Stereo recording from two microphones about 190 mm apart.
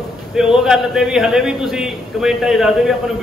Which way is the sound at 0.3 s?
5° right (ahead or behind).